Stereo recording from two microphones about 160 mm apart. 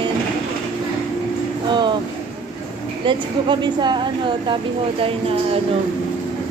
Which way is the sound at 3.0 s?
30° right (ahead or behind).